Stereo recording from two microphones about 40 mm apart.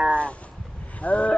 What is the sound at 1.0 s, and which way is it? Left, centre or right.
Speech, left.